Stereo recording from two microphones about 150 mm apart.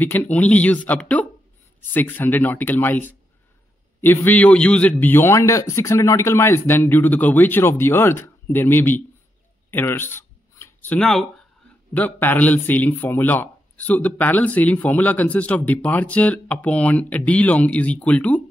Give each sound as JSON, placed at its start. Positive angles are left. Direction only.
{"t": 0.0, "sound": "speech", "side_deg": 10}
{"t": 9.7, "sound": "a sound", "side_deg": 15}
{"t": 11.9, "sound": "speech", "side_deg": 10}